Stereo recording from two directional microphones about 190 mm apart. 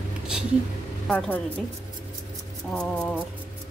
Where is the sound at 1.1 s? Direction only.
5° left (ahead or behind).